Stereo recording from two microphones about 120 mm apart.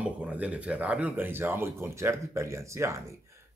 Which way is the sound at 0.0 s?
10° right (ahead or behind).